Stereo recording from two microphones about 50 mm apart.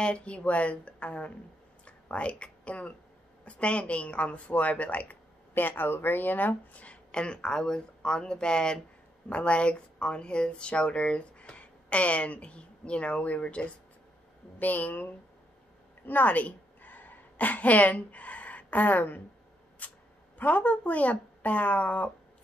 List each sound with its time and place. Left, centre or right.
0.0 s speech: left
1.9 s a sound: left
3.4 s speech: left
5.5 s speech: left
14.6 s speech: left
16.1 s a sound: left
20.3 s speech: left